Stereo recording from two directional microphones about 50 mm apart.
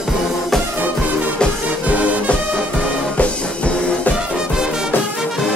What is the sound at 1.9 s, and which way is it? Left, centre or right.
Music, right.